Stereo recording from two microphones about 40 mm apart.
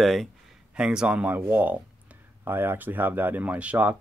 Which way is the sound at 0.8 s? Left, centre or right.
Right.